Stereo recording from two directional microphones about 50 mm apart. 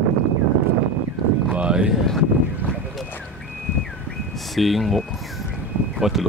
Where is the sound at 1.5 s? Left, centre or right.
Right.